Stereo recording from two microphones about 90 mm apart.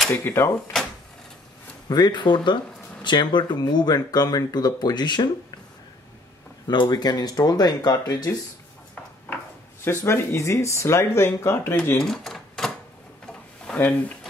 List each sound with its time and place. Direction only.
0.1 s speech: 30° left (ahead or behind)
1.9 s speech: 50° left (ahead or behind)
6.7 s speech: 55° left (ahead or behind)
9.8 s speech: 30° left (ahead or behind)
12.0 s typewriter: 5° left (ahead or behind)
13.7 s speech: 15° left (ahead or behind)